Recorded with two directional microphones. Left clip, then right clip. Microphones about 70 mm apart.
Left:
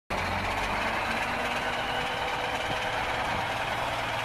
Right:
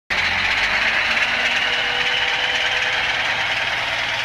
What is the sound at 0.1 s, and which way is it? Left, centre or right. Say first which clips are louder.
Vehicle: right 11 dB; left.